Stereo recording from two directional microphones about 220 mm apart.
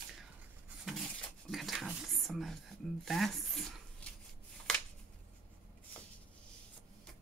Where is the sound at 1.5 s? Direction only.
Centre (ahead or behind).